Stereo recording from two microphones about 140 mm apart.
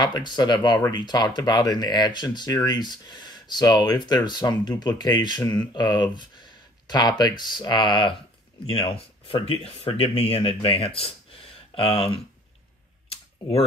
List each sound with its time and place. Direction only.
0.0 s speech: 30° left (ahead or behind)